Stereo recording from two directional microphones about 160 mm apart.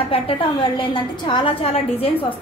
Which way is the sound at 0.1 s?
35° left (ahead or behind).